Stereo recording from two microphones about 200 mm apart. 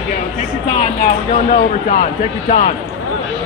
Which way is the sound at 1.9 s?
40° left (ahead or behind).